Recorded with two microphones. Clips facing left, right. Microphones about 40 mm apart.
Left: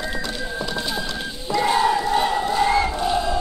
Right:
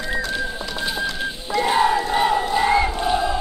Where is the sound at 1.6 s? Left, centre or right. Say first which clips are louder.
Right 1 dB; centre.